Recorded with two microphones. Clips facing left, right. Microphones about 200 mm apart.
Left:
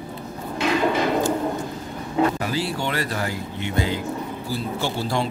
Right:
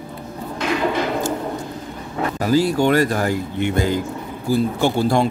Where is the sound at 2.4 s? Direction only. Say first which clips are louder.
Right 9 dB; 45° right (ahead or behind).